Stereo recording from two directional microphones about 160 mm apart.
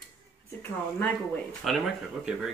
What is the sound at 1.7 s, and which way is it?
Speech, centre (ahead or behind).